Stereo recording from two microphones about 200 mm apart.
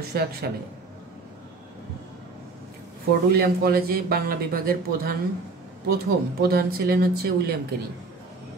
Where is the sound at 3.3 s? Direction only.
50° right (ahead or behind).